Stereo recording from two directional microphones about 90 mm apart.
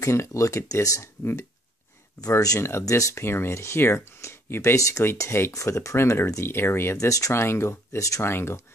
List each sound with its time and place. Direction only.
0.0 s speech: 35° left (ahead or behind)
2.2 s speech: 40° left (ahead or behind)